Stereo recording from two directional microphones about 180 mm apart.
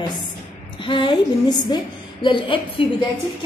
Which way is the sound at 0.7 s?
25° left (ahead or behind).